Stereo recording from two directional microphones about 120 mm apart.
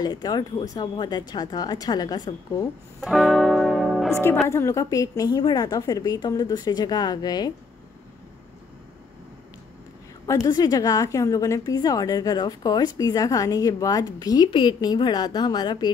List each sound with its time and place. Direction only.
0.0 s a woman's voice: 35° left (ahead or behind)
3.0 s music: centre (ahead or behind)
4.1 s a woman's voice: 20° left (ahead or behind)
10.2 s a woman's voice: 30° left (ahead or behind)